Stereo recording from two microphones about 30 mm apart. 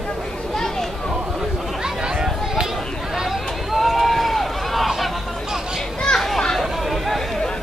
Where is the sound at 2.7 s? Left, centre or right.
Centre.